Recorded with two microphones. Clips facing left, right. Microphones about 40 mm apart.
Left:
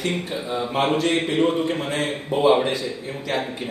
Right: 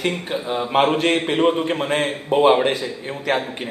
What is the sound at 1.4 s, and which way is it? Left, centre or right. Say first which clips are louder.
Speech: right 2 dB; right.